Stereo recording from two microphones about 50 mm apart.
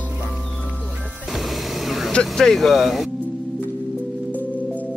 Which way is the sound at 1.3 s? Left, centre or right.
Centre.